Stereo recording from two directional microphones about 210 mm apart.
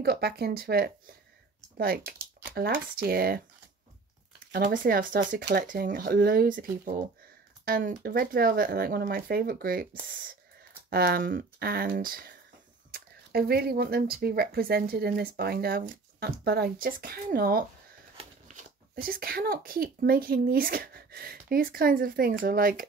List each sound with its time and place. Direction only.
0.0 s speech: 50° right (ahead or behind)
10.9 s speech: 45° right (ahead or behind)